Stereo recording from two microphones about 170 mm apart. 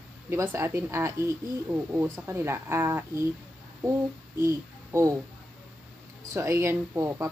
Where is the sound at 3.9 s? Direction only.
15° right (ahead or behind).